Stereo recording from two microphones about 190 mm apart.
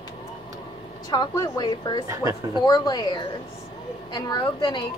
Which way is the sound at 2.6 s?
20° left (ahead or behind).